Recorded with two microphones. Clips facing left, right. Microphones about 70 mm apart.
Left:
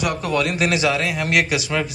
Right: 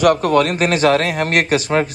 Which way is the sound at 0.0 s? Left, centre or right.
Right.